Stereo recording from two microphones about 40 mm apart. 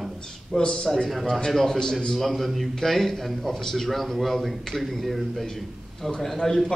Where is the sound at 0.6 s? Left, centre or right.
Centre.